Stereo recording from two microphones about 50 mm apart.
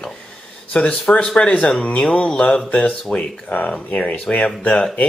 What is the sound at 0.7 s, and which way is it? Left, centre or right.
Speech, left.